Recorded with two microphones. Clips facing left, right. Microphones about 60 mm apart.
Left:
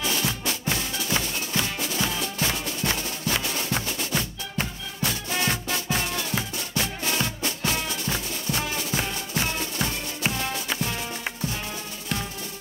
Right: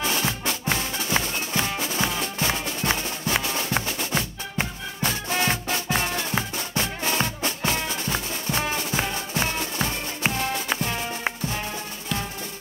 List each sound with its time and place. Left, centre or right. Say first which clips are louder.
0.0 s music: right 2 dB; right